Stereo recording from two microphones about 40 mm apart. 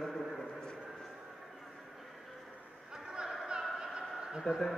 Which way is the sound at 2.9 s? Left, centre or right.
Right.